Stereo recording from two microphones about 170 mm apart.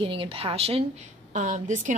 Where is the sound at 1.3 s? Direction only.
45° right (ahead or behind).